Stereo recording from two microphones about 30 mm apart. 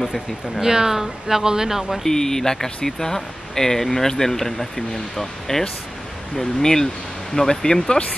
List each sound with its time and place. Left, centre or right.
0.6 s speech: centre
1.4 s speech: right
2.0 s speech: centre